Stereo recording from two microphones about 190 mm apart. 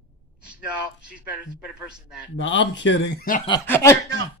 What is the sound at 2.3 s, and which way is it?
Speech, 75° left (ahead or behind).